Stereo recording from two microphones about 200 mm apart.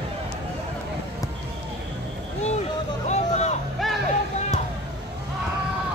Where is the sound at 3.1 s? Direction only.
35° left (ahead or behind).